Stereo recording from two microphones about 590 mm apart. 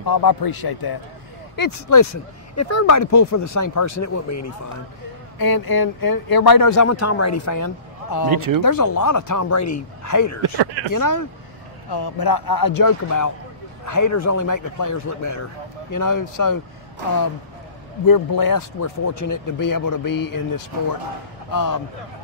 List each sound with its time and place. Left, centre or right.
0.1 s speech: left
8.3 s speech: right
8.6 s speech: left
10.4 s speech: right
10.9 s speech: left
18.0 s speech: left